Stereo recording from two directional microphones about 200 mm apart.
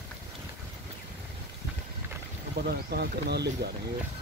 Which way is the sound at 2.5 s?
50° right (ahead or behind).